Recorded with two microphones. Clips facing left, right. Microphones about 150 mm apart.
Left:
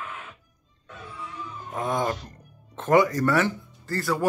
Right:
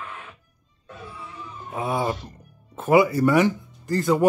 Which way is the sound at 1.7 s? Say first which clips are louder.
Right 1 dB; 10° right (ahead or behind).